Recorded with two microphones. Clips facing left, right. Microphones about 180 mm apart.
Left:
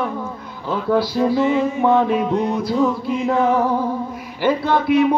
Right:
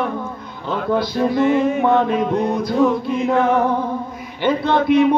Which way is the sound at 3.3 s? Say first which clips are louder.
Right 1 dB; 65° right (ahead or behind).